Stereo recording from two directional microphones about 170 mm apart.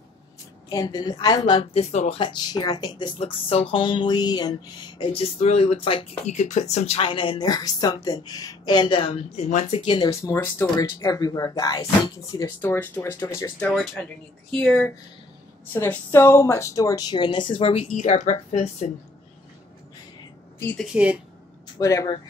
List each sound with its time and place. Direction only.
0.7 s a woman's voice: 20° left (ahead or behind)
5.4 s a woman's voice: 40° left (ahead or behind)
9.8 s a woman's voice: 30° left (ahead or behind)
10.2 s speech: 15° left (ahead or behind)
15.7 s a woman's voice: 10° left (ahead or behind); by 17.8 s 30° left (ahead or behind)
17.9 s speech: 45° left (ahead or behind)
20.5 s speech: 10° left (ahead or behind)
20.9 s speech: 5° right (ahead or behind)
21.7 s a woman's voice: 20° left (ahead or behind)